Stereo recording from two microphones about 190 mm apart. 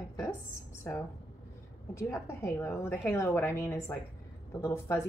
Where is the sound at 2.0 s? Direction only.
15° left (ahead or behind).